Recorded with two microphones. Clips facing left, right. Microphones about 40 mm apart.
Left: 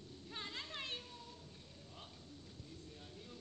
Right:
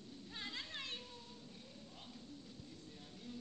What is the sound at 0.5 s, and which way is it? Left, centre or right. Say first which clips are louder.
Children playing: left 2 dB; left.